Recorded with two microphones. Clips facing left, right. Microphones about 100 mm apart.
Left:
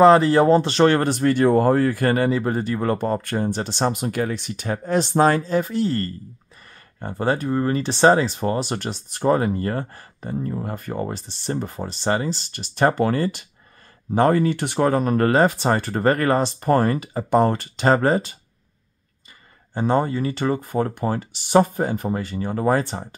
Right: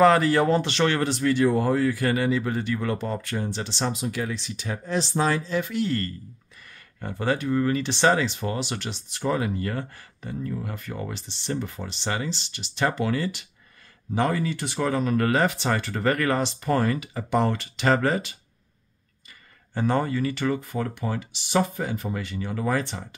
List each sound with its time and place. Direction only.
0.0 s speech: 25° left (ahead or behind)
19.7 s speech: 25° left (ahead or behind)